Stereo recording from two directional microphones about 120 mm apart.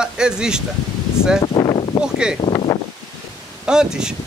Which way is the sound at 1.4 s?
40° left (ahead or behind).